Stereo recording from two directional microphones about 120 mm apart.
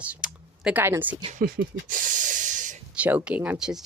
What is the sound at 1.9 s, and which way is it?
Hiss, 90° right.